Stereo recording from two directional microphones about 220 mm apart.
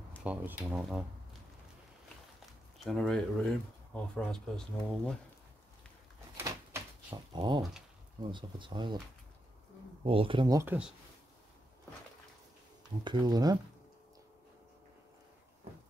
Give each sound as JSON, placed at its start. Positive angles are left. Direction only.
{"t": 0.2, "sound": "speech", "side_deg": -5}
{"t": 2.8, "sound": "speech", "side_deg": 0}
{"t": 6.3, "sound": "a sound", "side_deg": -10}
{"t": 8.3, "sound": "speech", "side_deg": -20}
{"t": 10.0, "sound": "speech", "side_deg": -25}
{"t": 13.0, "sound": "speech", "side_deg": -20}